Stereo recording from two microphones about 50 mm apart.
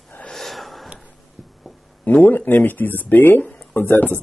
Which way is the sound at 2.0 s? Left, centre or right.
Left.